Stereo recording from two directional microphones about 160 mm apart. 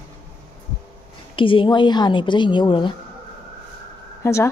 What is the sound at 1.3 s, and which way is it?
A woman's voice, 30° left (ahead or behind).